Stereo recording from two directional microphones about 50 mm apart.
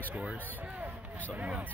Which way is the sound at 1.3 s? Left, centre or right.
Right.